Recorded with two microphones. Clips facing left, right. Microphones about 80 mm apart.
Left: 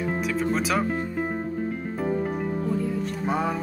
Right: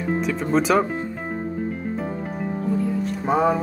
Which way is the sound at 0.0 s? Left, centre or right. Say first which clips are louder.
Right 2 dB; centre.